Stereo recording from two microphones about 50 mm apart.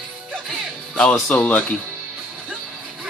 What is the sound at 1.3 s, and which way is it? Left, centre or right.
Speech, left.